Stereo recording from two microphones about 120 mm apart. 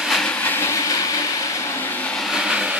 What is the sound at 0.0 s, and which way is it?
Train, 5° left (ahead or behind).